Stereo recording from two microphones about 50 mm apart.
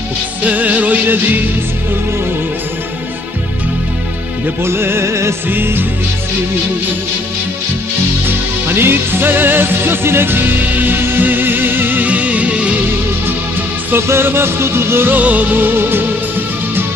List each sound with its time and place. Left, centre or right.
0.4 s music: right
4.6 s music: right
5.5 s music: right
8.3 s music: right
12.1 s music: right
14.0 s music: right
15.1 s music: right